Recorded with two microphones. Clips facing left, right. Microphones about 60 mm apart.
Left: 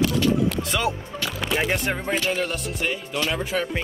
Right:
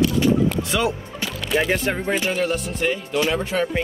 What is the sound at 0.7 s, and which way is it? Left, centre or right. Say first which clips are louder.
Music: right 2 dB; centre.